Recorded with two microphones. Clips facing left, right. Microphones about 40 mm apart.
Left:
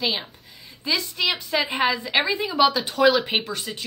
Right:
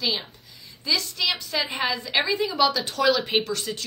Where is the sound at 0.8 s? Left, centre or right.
Left.